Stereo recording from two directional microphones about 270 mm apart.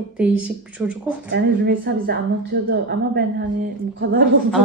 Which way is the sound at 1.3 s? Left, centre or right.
Right.